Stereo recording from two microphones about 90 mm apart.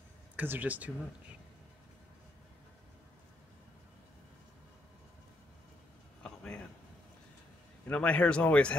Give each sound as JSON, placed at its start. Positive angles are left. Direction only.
{"t": 0.4, "sound": "speech", "side_deg": -20}
{"t": 6.2, "sound": "a sound", "side_deg": 10}
{"t": 7.9, "sound": "speech", "side_deg": 15}